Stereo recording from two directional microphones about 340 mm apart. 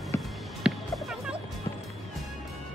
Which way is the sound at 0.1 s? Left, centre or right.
Centre.